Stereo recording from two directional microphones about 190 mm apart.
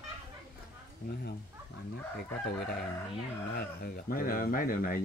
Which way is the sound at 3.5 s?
50° left (ahead or behind).